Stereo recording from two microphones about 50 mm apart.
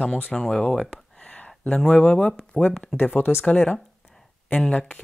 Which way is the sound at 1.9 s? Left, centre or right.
Left.